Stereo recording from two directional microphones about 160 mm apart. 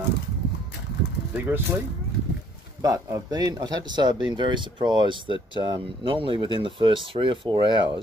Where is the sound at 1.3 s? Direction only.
10° right (ahead or behind).